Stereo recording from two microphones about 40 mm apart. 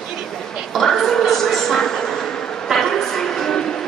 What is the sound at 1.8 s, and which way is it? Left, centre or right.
Vehicle, centre.